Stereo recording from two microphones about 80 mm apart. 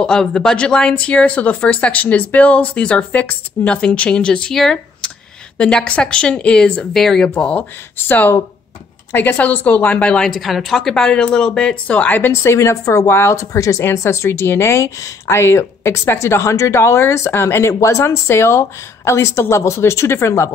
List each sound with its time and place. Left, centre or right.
0.0 s speech: centre
7.2 s a woman's voice: centre
10.4 s speech: centre; by 12.5 s left
12.5 s speech: left